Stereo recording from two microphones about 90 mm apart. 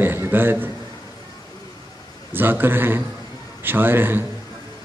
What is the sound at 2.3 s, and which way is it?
A man's voice, 20° right (ahead or behind).